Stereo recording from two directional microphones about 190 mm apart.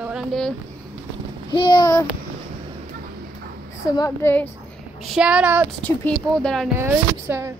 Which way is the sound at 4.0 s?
15° left (ahead or behind).